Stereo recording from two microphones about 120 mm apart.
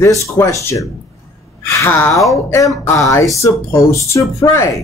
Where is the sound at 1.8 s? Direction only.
20° left (ahead or behind).